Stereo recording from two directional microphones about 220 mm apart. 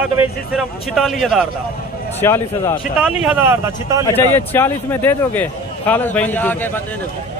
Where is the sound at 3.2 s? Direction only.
10° right (ahead or behind).